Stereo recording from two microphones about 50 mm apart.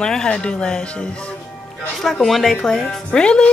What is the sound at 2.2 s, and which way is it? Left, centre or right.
Speech, centre.